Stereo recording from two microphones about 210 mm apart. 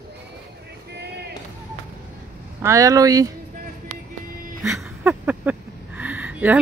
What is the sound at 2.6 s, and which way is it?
Speech, 15° right (ahead or behind).